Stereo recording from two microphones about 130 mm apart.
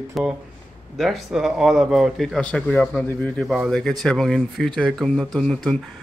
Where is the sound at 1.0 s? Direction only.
Centre (ahead or behind).